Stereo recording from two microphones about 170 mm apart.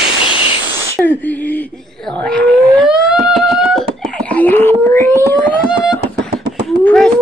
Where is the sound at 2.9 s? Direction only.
5° right (ahead or behind); by 5.5 s 15° left (ahead or behind).